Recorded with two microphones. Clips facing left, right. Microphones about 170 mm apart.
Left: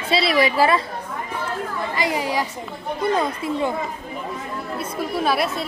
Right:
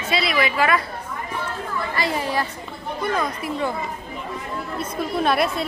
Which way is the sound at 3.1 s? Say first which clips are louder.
Left 2 dB; 25° left (ahead or behind).